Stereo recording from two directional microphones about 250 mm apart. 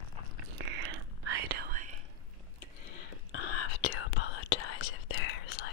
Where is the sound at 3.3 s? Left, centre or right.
Left.